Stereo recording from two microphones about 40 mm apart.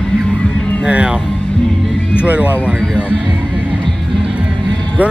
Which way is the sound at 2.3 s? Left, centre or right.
Right.